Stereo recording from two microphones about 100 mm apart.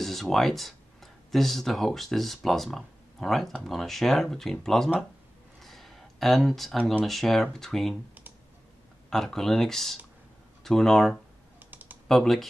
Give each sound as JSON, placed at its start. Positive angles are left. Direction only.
{"t": 0.0, "sound": "speech", "side_deg": 0}
{"t": 5.6, "sound": "a sound", "side_deg": 0}
{"t": 7.1, "sound": "speech", "side_deg": 0}
{"t": 9.1, "sound": "speech", "side_deg": 5}
{"t": 11.7, "sound": "typing", "side_deg": -20}
{"t": 12.1, "sound": "speech", "side_deg": 0}